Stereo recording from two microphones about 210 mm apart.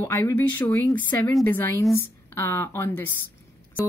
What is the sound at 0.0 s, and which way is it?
Speech, 10° left (ahead or behind).